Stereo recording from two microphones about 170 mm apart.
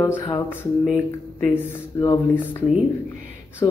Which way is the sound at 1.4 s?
10° left (ahead or behind).